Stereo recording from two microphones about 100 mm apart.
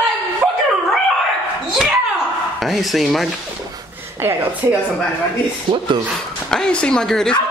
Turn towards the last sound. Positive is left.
turn(degrees=5)  # may be behind; listen again after turning